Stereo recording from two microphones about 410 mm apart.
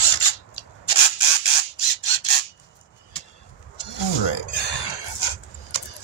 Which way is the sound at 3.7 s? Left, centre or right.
Left.